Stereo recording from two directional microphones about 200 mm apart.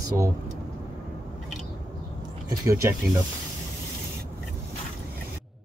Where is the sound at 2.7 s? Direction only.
15° right (ahead or behind).